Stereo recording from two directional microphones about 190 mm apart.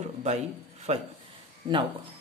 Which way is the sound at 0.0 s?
35° right (ahead or behind).